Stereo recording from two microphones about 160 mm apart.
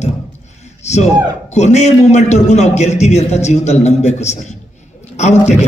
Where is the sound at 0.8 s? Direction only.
45° left (ahead or behind).